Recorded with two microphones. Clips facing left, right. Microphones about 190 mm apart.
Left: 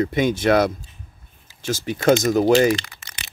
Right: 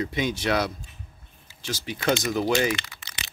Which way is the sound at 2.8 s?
50° left (ahead or behind).